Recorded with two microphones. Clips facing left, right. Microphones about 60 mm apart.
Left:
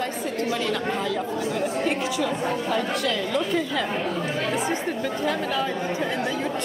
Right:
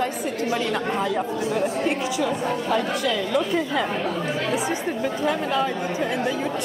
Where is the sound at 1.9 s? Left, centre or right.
Centre.